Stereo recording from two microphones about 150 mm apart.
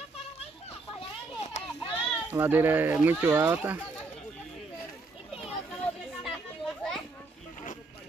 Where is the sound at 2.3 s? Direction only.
10° right (ahead or behind).